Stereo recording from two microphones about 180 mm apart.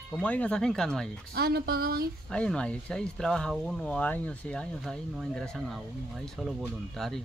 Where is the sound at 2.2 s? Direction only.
5° left (ahead or behind).